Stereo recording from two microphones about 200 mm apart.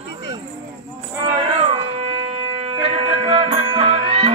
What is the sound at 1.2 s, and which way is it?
Music, 30° right (ahead or behind).